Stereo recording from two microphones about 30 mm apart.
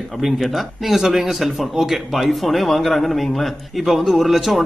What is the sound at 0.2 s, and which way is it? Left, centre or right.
Speech, centre.